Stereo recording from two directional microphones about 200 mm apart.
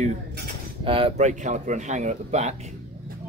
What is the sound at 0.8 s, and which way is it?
Speech, 30° right (ahead or behind).